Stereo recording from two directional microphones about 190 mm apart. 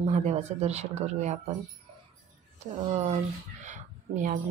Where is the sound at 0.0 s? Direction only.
35° right (ahead or behind).